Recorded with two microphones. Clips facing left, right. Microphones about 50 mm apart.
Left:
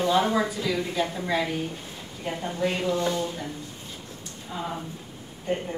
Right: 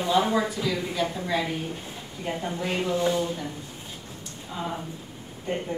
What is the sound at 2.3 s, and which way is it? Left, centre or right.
A woman's voice, centre.